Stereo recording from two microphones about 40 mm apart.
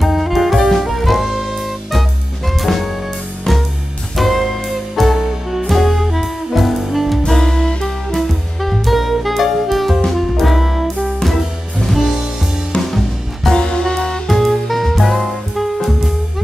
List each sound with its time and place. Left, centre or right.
0.0 s saxophone: centre
3.5 s music: centre
4.2 s music: centre
7.2 s music: centre
8.2 s music: centre
12.9 s music: centre
13.6 s music: centre
14.2 s music: centre